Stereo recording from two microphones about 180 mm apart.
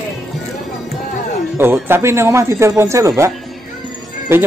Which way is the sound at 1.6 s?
10° right (ahead or behind).